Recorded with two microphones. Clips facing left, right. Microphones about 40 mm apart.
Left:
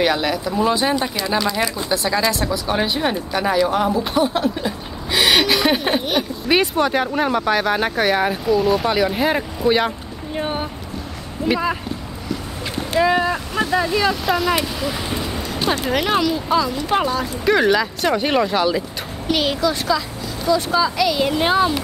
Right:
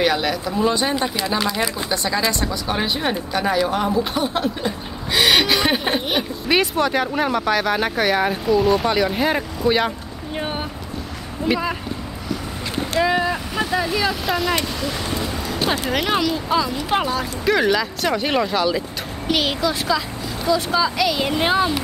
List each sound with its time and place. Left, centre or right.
0.0 s speech: centre
6.5 s speech: centre
12.9 s speech: centre